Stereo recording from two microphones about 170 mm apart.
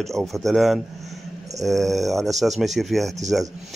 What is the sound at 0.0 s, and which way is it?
Speech, centre (ahead or behind).